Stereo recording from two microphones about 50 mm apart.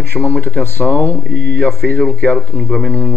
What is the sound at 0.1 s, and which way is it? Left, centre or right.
Speech, left.